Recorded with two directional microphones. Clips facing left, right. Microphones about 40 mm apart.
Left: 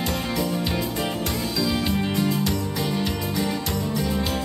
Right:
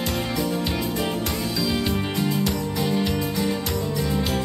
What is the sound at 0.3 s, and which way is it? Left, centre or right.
Music, right.